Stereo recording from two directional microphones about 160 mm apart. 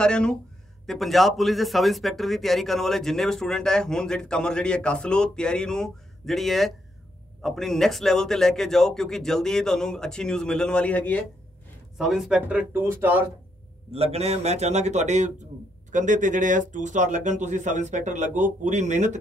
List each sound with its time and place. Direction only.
0.0 s a man's voice: 5° left (ahead or behind)
12.0 s speech: 5° right (ahead or behind)
13.9 s speech: 40° right (ahead or behind)